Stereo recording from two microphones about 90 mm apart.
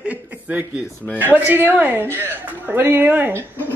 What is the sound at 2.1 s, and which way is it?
Speech, 20° left (ahead or behind).